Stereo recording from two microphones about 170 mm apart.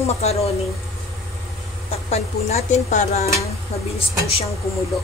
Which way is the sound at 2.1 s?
40° left (ahead or behind).